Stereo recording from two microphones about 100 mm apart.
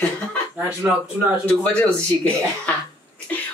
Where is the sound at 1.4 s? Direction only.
15° left (ahead or behind).